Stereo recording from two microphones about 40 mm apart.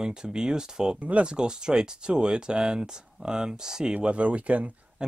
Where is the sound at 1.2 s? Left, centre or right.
Right.